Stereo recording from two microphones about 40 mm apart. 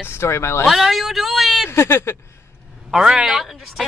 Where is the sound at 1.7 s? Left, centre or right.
Left.